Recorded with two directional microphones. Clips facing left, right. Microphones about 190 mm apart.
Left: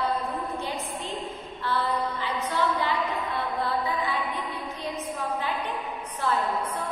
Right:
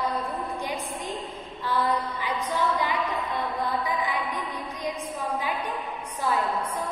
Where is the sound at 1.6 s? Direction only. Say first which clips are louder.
Right 1 dB; 15° right (ahead or behind).